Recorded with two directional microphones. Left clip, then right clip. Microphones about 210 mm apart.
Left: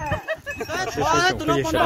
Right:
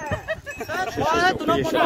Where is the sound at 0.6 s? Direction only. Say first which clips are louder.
Even; 40° right (ahead or behind).